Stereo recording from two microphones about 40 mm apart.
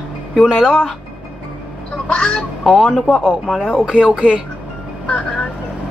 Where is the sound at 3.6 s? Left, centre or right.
Right.